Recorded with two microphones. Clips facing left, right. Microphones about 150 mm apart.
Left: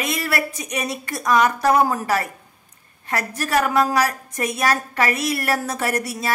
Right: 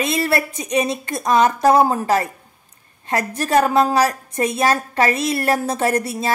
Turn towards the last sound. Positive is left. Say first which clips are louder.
# right 4 dB
turn(degrees=-25)  # may be behind; listen again after turning